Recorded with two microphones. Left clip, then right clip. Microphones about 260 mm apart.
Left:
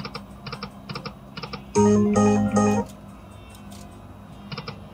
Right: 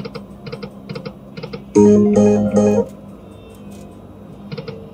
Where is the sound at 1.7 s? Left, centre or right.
Left.